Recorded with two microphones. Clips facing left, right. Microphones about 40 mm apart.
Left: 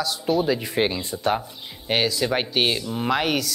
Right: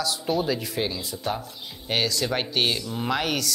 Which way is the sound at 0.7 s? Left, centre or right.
Left.